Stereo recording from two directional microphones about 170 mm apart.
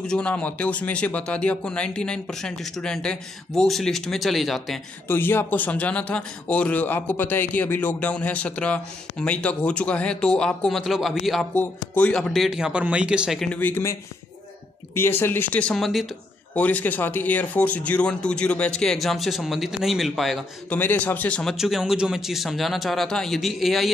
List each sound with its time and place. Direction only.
0.0 s a man's voice: 5° left (ahead or behind)
5.0 s a man's voice: 10° left (ahead or behind)
15.0 s a man's voice: 15° left (ahead or behind)
20.8 s a man's voice: 10° left (ahead or behind)